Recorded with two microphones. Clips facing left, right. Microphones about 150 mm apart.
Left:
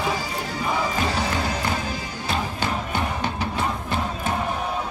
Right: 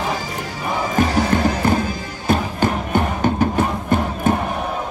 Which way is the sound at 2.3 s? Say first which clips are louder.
Right 8 dB; 50° right (ahead or behind).